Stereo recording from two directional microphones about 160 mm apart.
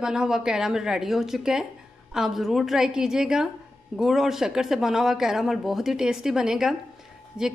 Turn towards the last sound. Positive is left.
turn(degrees=-5)  # may be behind; listen again after turning